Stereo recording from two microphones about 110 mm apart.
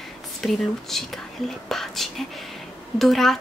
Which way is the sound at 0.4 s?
Centre (ahead or behind).